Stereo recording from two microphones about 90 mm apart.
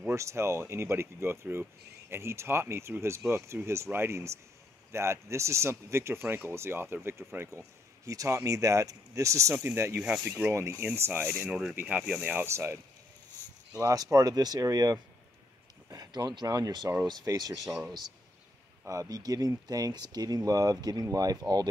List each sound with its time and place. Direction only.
0.1 s speech: 35° right (ahead or behind)
13.7 s speech: 40° right (ahead or behind)
18.9 s speech: 40° right (ahead or behind)